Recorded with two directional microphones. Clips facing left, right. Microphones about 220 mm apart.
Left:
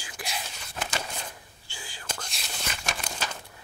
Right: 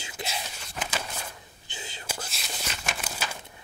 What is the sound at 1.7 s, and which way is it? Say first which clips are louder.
Whispering: right 3 dB; 20° right (ahead or behind).